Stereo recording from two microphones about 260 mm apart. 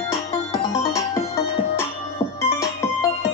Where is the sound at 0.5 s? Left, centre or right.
Centre.